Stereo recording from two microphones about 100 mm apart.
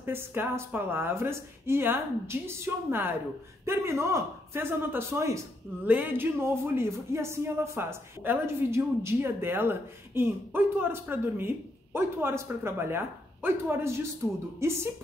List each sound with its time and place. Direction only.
0.0 s speech: 25° right (ahead or behind)
5.9 s speech: 15° right (ahead or behind)